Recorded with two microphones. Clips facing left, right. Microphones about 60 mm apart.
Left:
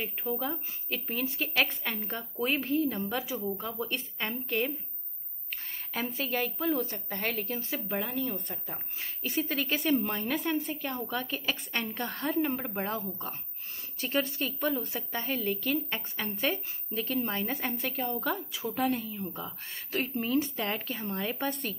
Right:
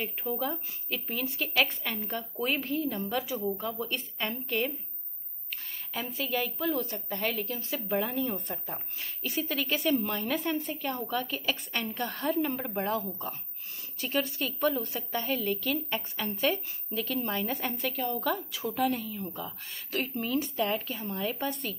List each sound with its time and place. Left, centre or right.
0.3 s a woman's voice: centre
3.3 s speech: centre
3.6 s a woman's voice: left
5.5 s a sound: left
6.3 s a woman's voice: left
7.9 s speech: centre
9.0 s speech: left
12.5 s a woman's voice: centre
12.8 s speech: left
14.7 s a woman's voice: centre
15.0 s speech: left
15.4 s a woman's voice: centre
20.5 s a woman's voice: left